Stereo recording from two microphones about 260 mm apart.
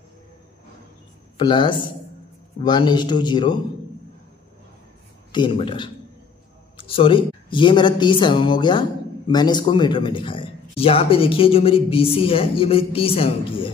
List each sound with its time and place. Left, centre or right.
1.4 s a man's voice: centre
5.3 s a man's voice: centre